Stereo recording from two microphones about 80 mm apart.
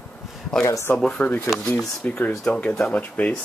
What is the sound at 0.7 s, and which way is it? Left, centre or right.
Speech, left.